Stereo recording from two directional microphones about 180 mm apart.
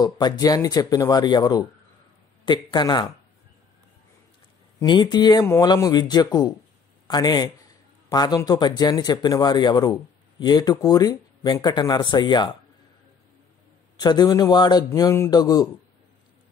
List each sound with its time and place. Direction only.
0.0 s speech: 20° left (ahead or behind)
4.7 s speech: 25° left (ahead or behind)
13.9 s speech: 20° left (ahead or behind)